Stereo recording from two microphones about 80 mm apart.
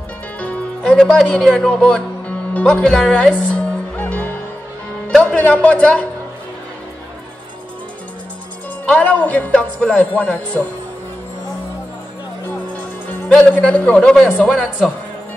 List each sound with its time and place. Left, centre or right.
0.4 s music: centre
5.1 s a man's voice: centre
8.8 s a man's voice: centre
13.3 s a man's voice: centre